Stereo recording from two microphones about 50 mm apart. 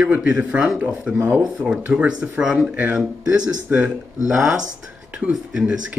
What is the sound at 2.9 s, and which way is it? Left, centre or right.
Speech, centre.